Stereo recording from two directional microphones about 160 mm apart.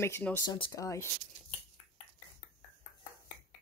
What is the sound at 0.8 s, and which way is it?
Speech, 20° left (ahead or behind).